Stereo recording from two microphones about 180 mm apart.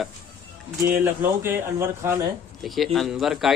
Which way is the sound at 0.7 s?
15° right (ahead or behind).